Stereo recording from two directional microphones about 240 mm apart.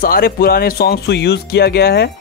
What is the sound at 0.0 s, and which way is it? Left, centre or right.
Speech, left.